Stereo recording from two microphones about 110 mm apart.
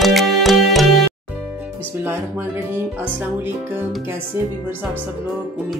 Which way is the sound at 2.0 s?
20° right (ahead or behind).